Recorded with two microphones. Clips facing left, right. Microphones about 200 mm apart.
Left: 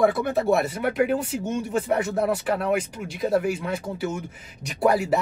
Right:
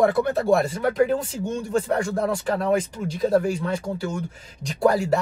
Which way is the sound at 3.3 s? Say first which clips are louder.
Right 2 dB; 5° left (ahead or behind).